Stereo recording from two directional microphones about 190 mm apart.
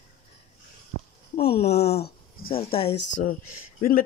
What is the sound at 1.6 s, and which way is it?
Speech, 35° left (ahead or behind).